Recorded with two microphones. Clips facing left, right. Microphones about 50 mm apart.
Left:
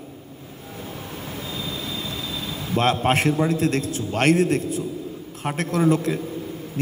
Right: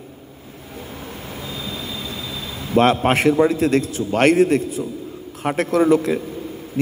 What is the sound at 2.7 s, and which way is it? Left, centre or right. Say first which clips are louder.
Speech: right 5 dB; right.